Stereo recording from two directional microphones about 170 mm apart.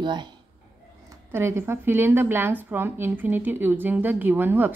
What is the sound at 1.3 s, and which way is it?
A woman's voice, 15° right (ahead or behind).